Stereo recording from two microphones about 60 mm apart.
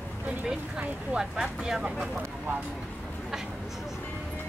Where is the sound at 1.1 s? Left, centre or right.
Centre.